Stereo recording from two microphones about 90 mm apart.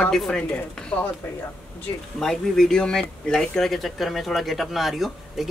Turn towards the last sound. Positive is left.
turn(degrees=0)  # may be behind; listen again after turning